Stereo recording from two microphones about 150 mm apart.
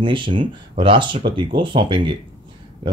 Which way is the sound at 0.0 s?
30° right (ahead or behind).